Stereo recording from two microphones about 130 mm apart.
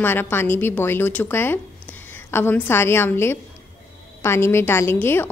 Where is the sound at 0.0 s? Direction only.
15° left (ahead or behind).